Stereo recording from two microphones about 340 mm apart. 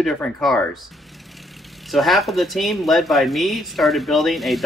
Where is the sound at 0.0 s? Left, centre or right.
Centre.